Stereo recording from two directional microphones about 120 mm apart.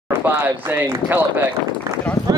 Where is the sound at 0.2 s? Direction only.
20° right (ahead or behind).